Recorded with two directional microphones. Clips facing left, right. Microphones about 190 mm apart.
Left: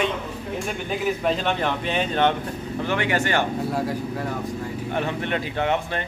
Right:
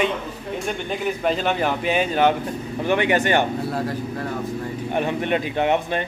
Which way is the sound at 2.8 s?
20° right (ahead or behind).